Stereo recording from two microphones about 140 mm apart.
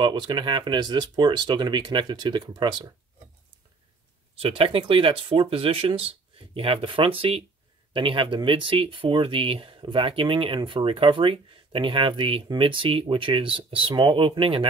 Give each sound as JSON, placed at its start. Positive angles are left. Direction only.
{"t": 0.0, "sound": "speech", "side_deg": -35}
{"t": 4.4, "sound": "speech", "side_deg": -40}